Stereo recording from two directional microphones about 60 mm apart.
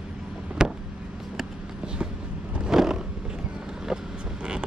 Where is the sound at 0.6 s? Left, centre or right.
Centre.